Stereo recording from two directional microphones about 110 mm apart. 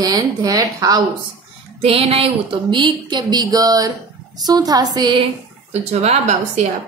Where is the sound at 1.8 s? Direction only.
60° right (ahead or behind); by 5.2 s 40° right (ahead or behind).